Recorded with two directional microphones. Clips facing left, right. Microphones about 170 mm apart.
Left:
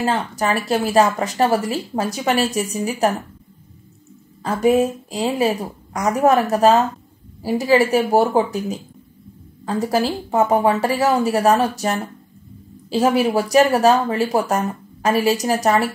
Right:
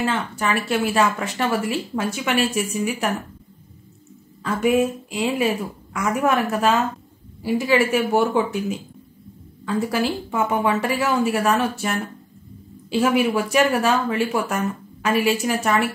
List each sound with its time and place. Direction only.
0.0 s speech: 40° left (ahead or behind)
4.4 s speech: 35° left (ahead or behind)